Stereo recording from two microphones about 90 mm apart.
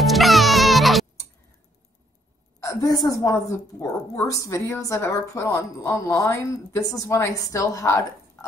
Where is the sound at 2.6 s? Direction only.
40° left (ahead or behind).